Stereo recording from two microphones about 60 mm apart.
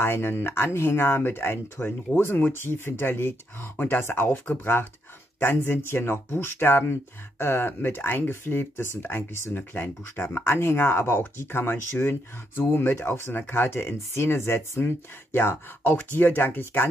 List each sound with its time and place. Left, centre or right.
0.0 s speech: left
5.8 s speech: left